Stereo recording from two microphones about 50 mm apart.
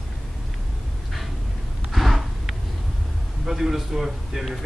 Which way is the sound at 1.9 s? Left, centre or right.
Centre.